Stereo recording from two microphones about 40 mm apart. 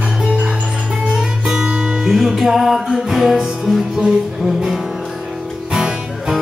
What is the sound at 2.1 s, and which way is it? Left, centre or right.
Music, centre.